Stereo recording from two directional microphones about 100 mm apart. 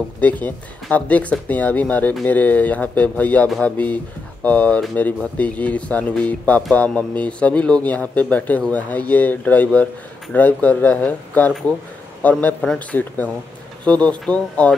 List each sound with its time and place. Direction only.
0.2 s speech: 15° left (ahead or behind)